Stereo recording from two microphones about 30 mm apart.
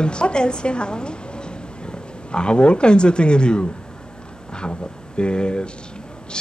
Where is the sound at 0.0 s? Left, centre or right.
Left.